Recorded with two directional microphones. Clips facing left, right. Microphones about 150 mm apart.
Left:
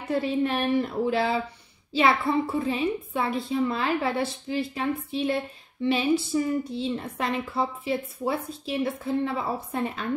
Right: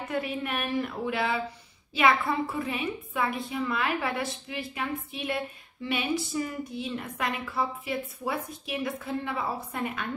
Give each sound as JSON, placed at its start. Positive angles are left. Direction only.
{"t": 0.1, "sound": "a woman's voice", "side_deg": 30}